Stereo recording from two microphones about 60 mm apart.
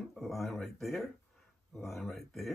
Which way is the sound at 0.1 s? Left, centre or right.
Centre.